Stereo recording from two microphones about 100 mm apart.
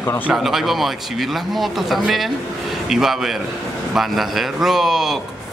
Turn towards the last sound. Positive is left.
turn(degrees=-5)  # may be behind; listen again after turning